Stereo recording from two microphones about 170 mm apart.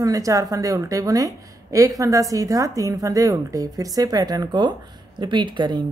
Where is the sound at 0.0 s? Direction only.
20° right (ahead or behind).